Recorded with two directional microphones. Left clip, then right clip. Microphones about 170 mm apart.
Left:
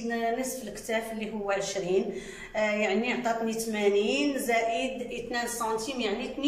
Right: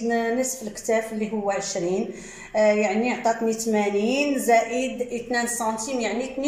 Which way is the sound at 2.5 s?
30° right (ahead or behind).